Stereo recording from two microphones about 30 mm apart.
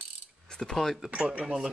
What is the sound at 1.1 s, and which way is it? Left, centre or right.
Speech, right.